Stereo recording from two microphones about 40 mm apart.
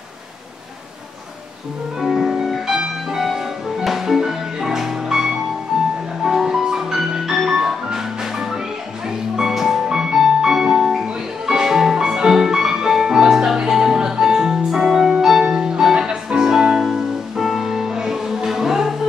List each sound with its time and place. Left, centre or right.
2.0 s music: centre
3.3 s music: centre